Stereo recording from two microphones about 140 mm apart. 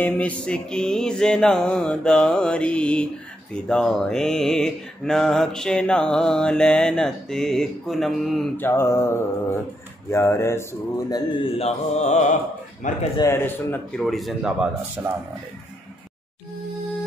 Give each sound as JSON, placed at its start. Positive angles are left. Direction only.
{"t": 0.0, "sound": "mantra", "side_deg": 10}
{"t": 8.5, "sound": "mantra", "side_deg": 15}
{"t": 10.1, "sound": "speech", "side_deg": 20}
{"t": 11.5, "sound": "mantra", "side_deg": 50}
{"t": 13.2, "sound": "mantra", "side_deg": 15}
{"t": 14.0, "sound": "mantra", "side_deg": 0}
{"t": 15.0, "sound": "speech", "side_deg": -20}